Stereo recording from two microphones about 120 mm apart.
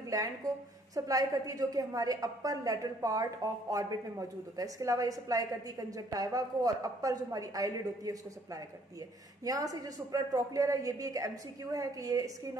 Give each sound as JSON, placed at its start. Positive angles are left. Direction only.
{"t": 0.1, "sound": "a woman's voice", "side_deg": -30}
{"t": 9.4, "sound": "a woman's voice", "side_deg": -30}